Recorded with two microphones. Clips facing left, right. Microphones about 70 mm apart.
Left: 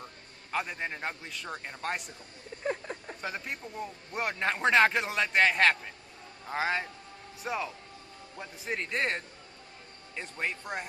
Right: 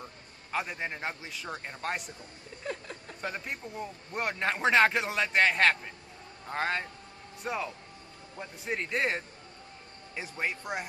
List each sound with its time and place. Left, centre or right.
0.0 s a man's voice: centre
2.6 s a sound: left
3.2 s speech: centre